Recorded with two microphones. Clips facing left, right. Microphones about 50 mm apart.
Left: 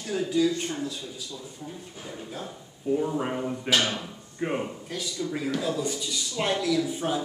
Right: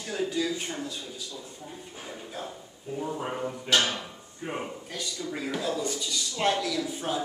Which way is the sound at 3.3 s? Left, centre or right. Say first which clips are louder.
Right 2 dB; centre.